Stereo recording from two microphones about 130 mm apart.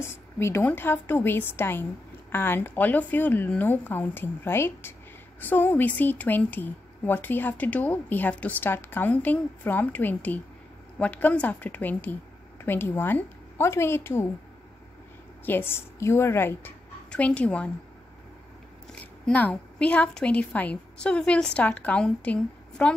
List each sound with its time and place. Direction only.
0.0 s a woman's voice: 20° left (ahead or behind)
15.4 s a woman's voice: 15° left (ahead or behind)
18.9 s a woman's voice: 10° left (ahead or behind)